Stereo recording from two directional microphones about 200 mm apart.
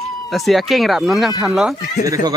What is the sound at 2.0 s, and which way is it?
Speech, 15° right (ahead or behind).